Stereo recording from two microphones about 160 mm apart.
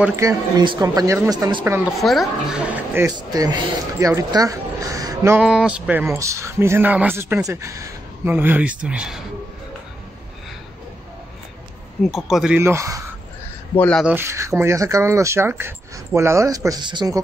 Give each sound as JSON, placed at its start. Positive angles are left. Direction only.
{"t": 0.0, "sound": "speech", "side_deg": -15}
{"t": 1.9, "sound": "speech", "side_deg": 0}
{"t": 3.1, "sound": "speech", "side_deg": -25}
{"t": 5.4, "sound": "speech", "side_deg": -5}
{"t": 12.0, "sound": "speech", "side_deg": 0}
{"t": 12.5, "sound": "speech", "side_deg": -15}
{"t": 13.7, "sound": "speech", "side_deg": 5}
{"t": 14.0, "sound": "speech", "side_deg": -15}